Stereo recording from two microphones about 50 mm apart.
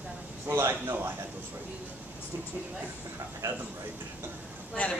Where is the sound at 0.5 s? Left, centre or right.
Right.